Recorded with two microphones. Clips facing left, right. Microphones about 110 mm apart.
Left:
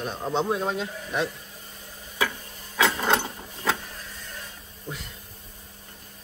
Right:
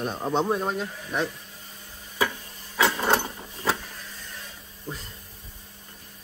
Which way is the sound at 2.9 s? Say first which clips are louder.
Even; centre (ahead or behind).